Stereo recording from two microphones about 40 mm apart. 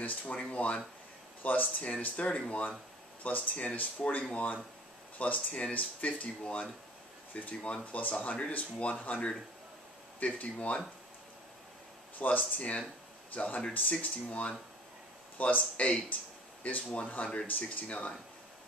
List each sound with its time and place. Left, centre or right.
0.0 s speech: left
1.4 s speech: left
5.2 s speech: left
12.2 s speech: left